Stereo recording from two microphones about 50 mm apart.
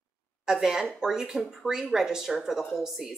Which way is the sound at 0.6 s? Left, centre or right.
Centre.